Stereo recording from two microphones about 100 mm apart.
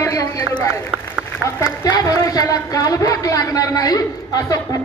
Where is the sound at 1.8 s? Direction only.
35° left (ahead or behind).